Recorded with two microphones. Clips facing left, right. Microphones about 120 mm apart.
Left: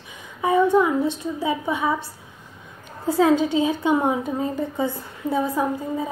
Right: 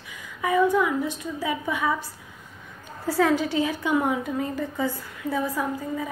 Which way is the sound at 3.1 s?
20° left (ahead or behind).